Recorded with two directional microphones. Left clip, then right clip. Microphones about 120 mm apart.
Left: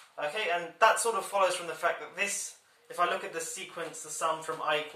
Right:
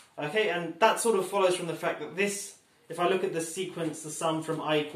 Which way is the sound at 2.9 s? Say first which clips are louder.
Right 3 dB; 15° right (ahead or behind).